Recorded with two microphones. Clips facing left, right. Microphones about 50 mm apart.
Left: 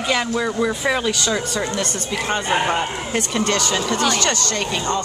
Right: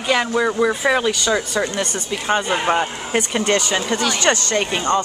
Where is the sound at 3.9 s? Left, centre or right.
Centre.